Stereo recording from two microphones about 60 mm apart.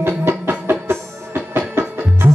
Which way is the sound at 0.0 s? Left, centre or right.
Right.